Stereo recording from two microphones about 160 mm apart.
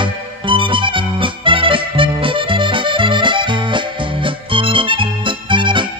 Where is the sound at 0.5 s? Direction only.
30° right (ahead or behind).